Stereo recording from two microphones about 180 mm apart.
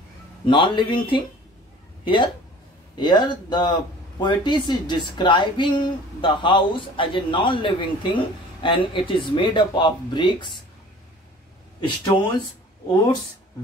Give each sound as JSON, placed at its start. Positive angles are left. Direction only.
{"t": 0.5, "sound": "speech", "side_deg": 25}
{"t": 11.8, "sound": "speech", "side_deg": 25}